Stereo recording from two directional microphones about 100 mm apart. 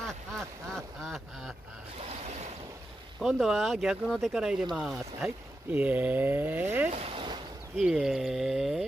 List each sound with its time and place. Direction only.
0.0 s duck: 5° left (ahead or behind)
2.0 s boat: 90° right
3.2 s speech: centre (ahead or behind)
4.4 s speech: 5° right (ahead or behind)
5.7 s speech: 15° right (ahead or behind)
7.0 s a sound: 75° right (ahead or behind)
7.8 s speech: 5° right (ahead or behind)